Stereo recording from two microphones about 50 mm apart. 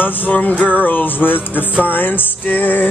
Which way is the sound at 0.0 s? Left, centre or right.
Left.